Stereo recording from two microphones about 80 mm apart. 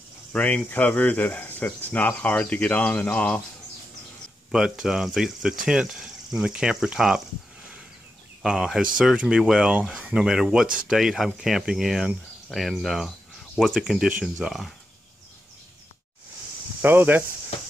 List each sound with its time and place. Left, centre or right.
0.3 s speech: centre
4.5 s speech: centre
8.4 s speech: centre
16.8 s speech: right